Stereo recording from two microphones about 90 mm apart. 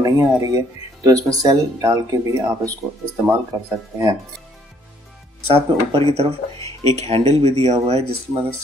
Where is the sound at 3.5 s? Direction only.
35° right (ahead or behind).